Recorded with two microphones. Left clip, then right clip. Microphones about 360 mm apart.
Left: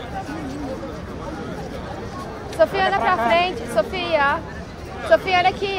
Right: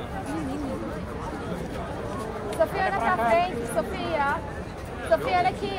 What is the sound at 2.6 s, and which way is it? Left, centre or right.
Speech, left.